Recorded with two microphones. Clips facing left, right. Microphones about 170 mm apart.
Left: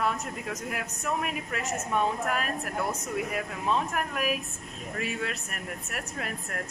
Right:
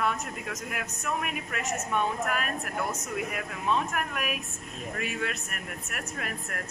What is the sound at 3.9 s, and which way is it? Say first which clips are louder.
Speech: left 3 dB; 30° left (ahead or behind).